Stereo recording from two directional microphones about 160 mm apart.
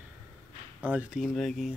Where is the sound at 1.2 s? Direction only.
Centre (ahead or behind).